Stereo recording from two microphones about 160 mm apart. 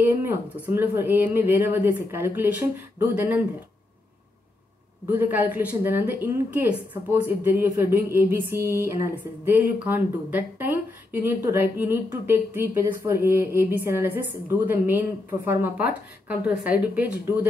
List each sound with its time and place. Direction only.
0.0 s speech: 15° right (ahead or behind)
5.0 s speech: 10° right (ahead or behind)